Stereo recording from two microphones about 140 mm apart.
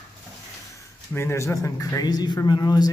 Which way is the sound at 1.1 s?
20° left (ahead or behind).